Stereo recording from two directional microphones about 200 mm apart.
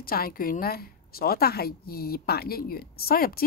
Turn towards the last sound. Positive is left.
turn(degrees=50)  # may be behind; listen again after turning